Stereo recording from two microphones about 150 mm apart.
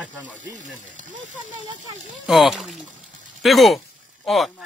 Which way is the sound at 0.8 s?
55° right (ahead or behind).